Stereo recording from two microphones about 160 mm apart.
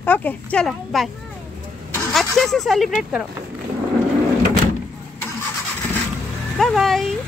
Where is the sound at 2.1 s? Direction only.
Centre (ahead or behind).